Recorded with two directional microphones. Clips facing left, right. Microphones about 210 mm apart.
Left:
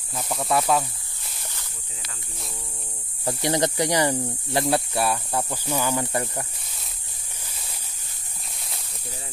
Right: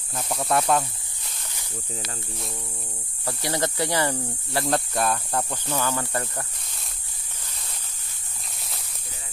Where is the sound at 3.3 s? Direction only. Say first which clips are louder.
Left 4 dB; 20° left (ahead or behind).